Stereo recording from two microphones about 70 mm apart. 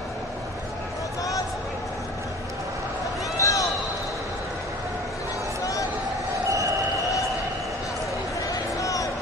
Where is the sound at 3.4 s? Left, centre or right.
Left.